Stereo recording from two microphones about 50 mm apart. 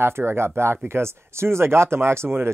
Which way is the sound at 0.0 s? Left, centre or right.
Right.